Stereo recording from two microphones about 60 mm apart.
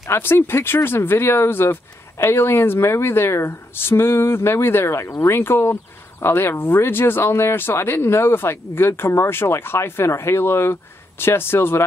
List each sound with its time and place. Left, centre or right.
0.1 s speech: left